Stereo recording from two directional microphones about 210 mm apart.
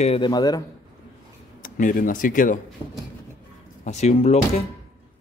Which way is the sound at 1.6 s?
40° left (ahead or behind).